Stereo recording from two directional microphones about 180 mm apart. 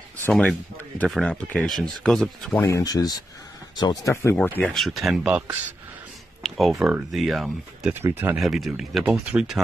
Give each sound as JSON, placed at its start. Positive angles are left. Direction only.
{"t": 0.3, "sound": "speech", "side_deg": 5}
{"t": 2.6, "sound": "speech", "side_deg": 20}
{"t": 8.4, "sound": "speech", "side_deg": 0}